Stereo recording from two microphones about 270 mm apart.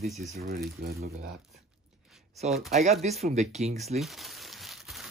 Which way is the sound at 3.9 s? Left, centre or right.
Centre.